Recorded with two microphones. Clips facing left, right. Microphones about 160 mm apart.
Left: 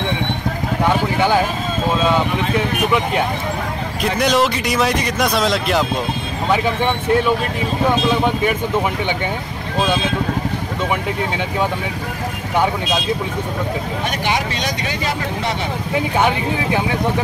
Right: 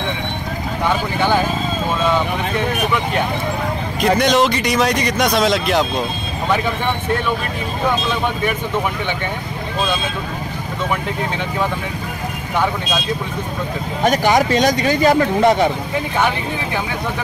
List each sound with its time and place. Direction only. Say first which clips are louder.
4.2 s speech: left 3 dB; 5° left (ahead or behind)
14.0 s speech: right 9 dB; 45° right (ahead or behind)